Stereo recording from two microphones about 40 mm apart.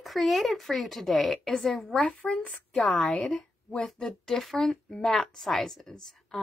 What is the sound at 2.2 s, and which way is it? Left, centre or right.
Speech, left.